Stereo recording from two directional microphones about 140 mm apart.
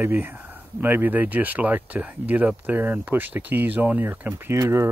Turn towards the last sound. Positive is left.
turn(degrees=-20)  # may be behind; listen again after turning